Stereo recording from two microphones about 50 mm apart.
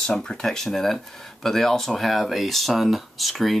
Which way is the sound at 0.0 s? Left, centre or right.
Centre.